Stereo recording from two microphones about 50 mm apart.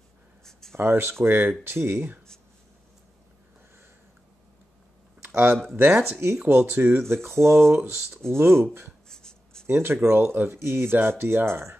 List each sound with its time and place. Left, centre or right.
0.5 s a sound: centre
0.7 s speech: right
5.2 s a sound: right
6.1 s speech: right
9.1 s writing: centre
9.7 s speech: right